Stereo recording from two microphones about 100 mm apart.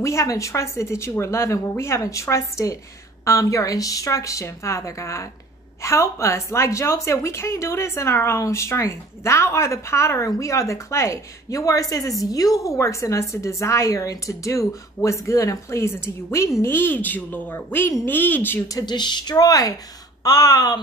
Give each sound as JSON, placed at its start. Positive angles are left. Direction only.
{"t": 0.0, "sound": "a woman's voice", "side_deg": 30}
{"t": 18.7, "sound": "a woman's voice", "side_deg": 40}